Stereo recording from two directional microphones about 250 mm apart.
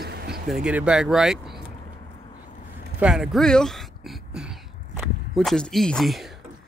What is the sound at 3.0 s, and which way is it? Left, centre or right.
Throat clearing, centre.